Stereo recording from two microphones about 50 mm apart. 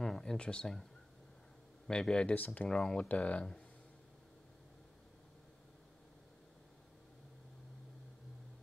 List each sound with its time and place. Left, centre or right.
0.0 s a sound: centre
0.4 s speech: left
1.9 s speech: centre
2.3 s speech: left
2.7 s speech: centre
3.1 s speech: left